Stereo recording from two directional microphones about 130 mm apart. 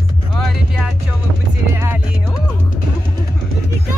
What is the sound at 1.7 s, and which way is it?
Music, 20° right (ahead or behind).